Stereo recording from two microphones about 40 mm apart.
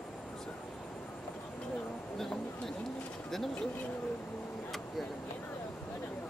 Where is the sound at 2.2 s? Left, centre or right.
Centre.